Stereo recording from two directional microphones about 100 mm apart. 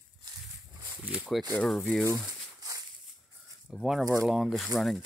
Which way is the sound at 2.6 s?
40° right (ahead or behind).